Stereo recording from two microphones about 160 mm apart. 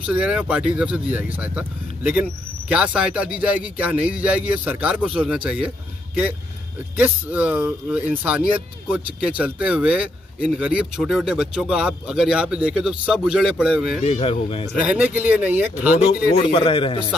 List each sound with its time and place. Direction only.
0.0 s speech: 5° right (ahead or behind)
7.0 s speech: 10° right (ahead or behind)
14.0 s speech: 40° left (ahead or behind)
14.8 s speech: 10° right (ahead or behind)
16.4 s speech: 35° left (ahead or behind)